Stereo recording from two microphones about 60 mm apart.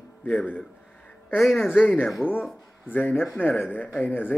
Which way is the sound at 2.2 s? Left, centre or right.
Left.